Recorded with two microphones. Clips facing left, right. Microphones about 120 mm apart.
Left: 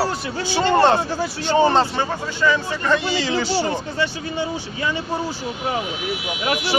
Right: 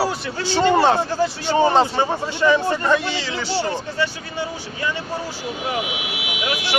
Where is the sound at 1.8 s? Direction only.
20° right (ahead or behind).